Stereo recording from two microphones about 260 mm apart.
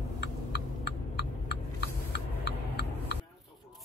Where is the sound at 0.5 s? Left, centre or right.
Left.